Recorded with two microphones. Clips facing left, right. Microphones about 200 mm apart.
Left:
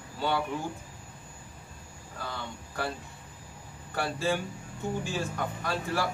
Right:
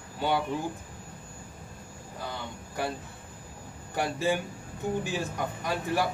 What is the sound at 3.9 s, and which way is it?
Speech, 15° right (ahead or behind).